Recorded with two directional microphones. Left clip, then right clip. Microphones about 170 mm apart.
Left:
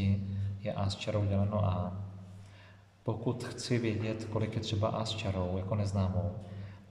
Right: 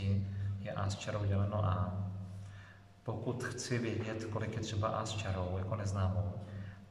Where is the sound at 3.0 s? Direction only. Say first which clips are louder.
Left 3 dB; 25° left (ahead or behind).